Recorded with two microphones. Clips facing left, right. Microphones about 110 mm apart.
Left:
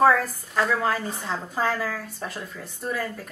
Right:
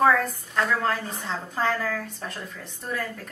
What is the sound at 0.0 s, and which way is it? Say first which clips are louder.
A woman's voice: left 2 dB; 5° left (ahead or behind).